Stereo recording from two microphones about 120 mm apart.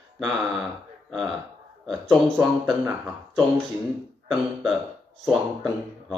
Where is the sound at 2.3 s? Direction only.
15° right (ahead or behind).